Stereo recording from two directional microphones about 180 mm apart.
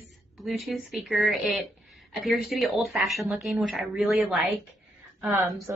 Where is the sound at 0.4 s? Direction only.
Centre (ahead or behind).